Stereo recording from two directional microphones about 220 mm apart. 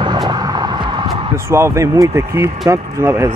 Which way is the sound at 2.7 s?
10° right (ahead or behind).